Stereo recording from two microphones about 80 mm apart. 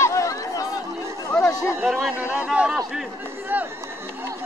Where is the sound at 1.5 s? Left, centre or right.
Left.